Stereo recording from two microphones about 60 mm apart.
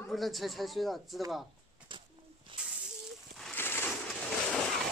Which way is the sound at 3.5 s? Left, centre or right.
Left.